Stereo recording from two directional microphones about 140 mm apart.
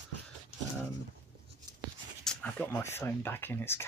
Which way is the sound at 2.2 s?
10° left (ahead or behind).